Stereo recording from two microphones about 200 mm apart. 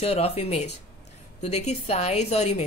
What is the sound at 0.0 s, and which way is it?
A woman's voice, 30° left (ahead or behind).